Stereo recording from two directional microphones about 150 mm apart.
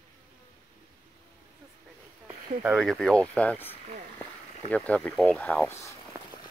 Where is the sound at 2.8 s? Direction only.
Centre (ahead or behind); by 5.9 s 20° left (ahead or behind).